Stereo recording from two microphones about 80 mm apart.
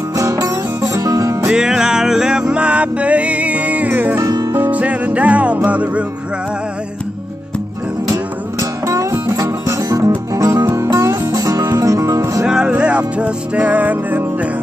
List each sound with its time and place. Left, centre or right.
0.1 s music: right
1.5 s music: centre
4.2 s music: right
4.6 s music: centre
8.1 s music: right
12.4 s music: centre